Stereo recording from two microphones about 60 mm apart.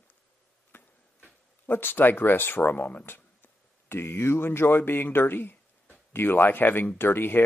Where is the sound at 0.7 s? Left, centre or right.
Left.